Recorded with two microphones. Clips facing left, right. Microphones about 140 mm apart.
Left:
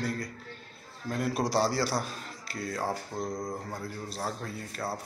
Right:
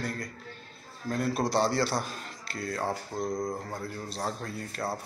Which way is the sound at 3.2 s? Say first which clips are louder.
Right 3 dB; 10° right (ahead or behind).